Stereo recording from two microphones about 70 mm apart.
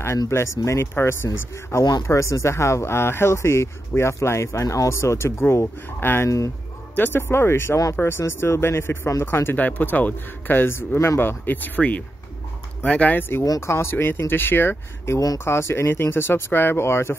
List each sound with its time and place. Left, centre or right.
0.3 s speech: left
9.6 s speech: left
13.6 s speech: left